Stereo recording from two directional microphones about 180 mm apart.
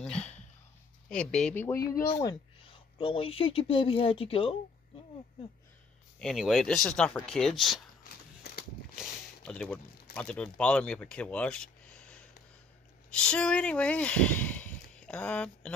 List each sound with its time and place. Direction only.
0.0 s a sound: 5° left (ahead or behind)
1.0 s speech: 5° left (ahead or behind)
2.2 s speech: 30° left (ahead or behind)
6.1 s speech: centre (ahead or behind)
8.9 s a sound: centre (ahead or behind)
10.1 s speech: 5° left (ahead or behind)